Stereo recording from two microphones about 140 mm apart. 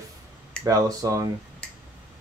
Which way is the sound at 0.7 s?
25° right (ahead or behind).